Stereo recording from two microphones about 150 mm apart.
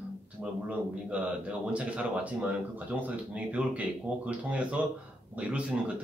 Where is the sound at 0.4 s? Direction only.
10° right (ahead or behind).